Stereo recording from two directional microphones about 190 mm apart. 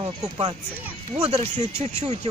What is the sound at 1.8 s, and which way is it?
Speech, 35° right (ahead or behind).